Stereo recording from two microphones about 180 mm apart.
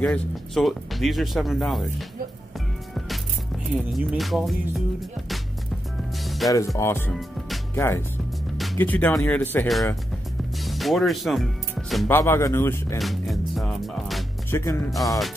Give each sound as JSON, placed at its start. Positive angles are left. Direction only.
{"t": 0.0, "sound": "speech", "side_deg": 5}
{"t": 3.7, "sound": "speech", "side_deg": -5}
{"t": 6.2, "sound": "music", "side_deg": 0}
{"t": 6.8, "sound": "speech", "side_deg": 15}
{"t": 7.2, "sound": "music", "side_deg": 0}
{"t": 7.7, "sound": "speech", "side_deg": 15}
{"t": 10.6, "sound": "speech", "side_deg": 0}
{"t": 12.1, "sound": "speech", "side_deg": 15}
{"t": 13.0, "sound": "music", "side_deg": 0}
{"t": 14.5, "sound": "speech", "side_deg": 15}